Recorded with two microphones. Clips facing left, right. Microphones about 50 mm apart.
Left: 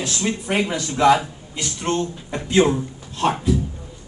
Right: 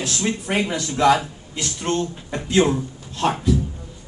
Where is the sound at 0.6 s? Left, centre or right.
Centre.